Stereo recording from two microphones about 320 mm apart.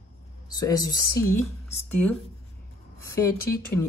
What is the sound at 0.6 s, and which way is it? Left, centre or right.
Speech, centre.